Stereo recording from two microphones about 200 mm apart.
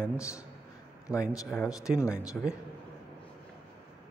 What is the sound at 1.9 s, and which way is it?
Speech, 15° left (ahead or behind).